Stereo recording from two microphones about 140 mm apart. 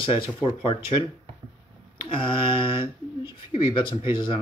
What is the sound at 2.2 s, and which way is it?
Speech, 40° left (ahead or behind).